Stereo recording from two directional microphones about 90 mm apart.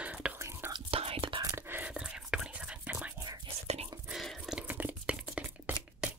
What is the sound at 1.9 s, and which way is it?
Whispering, 10° right (ahead or behind).